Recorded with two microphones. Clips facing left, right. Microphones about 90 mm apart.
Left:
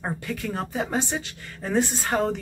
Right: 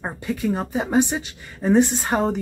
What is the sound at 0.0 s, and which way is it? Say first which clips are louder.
Speech: right 5 dB; 15° right (ahead or behind).